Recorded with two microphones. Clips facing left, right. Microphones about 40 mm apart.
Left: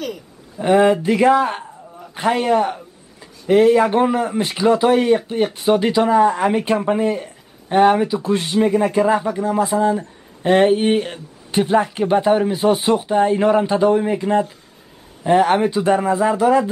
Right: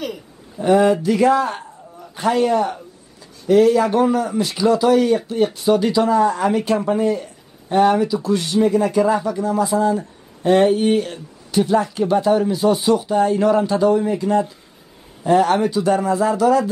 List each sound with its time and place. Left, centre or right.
0.6 s speech: left